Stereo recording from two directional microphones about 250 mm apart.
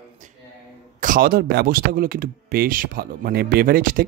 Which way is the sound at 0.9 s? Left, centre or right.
Right.